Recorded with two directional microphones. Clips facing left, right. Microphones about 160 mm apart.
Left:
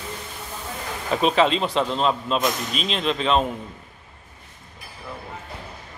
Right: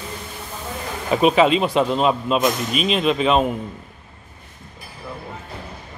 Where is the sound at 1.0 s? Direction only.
10° right (ahead or behind).